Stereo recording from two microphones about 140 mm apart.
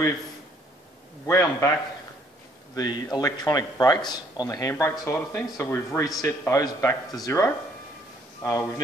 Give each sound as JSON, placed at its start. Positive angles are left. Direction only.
{"t": 1.2, "sound": "a man's voice", "side_deg": 20}
{"t": 2.7, "sound": "a man's voice", "side_deg": 30}